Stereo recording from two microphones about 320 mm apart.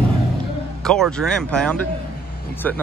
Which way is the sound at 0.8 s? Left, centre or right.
Centre.